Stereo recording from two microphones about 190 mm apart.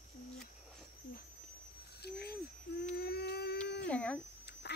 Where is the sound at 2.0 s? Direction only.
60° left (ahead or behind).